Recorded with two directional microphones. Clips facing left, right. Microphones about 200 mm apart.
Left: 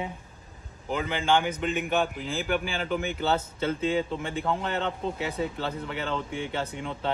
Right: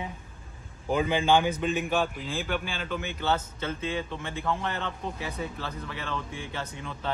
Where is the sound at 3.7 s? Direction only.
30° left (ahead or behind).